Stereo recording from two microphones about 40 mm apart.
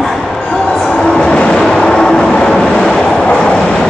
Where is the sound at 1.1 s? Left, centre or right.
Left.